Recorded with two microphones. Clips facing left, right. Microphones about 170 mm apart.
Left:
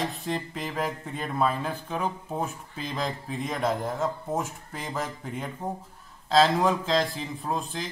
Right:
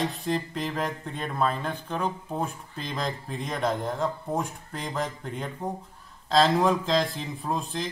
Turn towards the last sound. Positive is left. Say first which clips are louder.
# right 1 dB
turn(degrees=0)  # may be behind; listen again after turning